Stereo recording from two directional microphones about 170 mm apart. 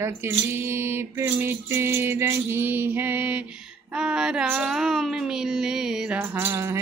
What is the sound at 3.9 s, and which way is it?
Music, 5° right (ahead or behind).